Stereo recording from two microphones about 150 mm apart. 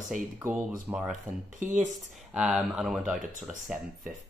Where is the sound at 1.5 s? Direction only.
55° right (ahead or behind).